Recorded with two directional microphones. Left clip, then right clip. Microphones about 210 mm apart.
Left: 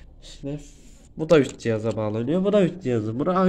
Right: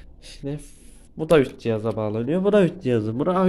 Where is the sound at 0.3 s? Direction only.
25° right (ahead or behind).